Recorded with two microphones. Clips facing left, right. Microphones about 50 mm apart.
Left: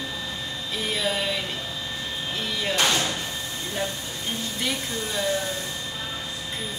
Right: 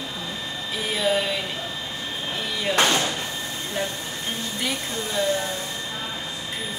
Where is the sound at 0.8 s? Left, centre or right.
Centre.